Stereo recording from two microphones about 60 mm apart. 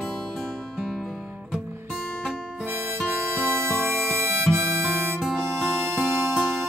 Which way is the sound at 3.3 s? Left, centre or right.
Right.